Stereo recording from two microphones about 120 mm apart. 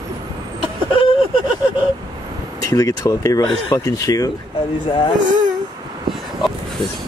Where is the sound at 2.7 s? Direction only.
25° left (ahead or behind).